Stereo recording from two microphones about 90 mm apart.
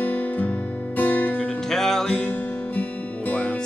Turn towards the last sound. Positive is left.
turn(degrees=15)  # may be behind; listen again after turning